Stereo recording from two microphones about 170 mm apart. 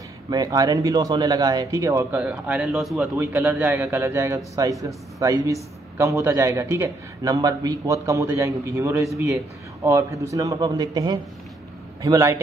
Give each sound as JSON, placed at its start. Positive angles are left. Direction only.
{"t": 0.3, "sound": "speech", "side_deg": -20}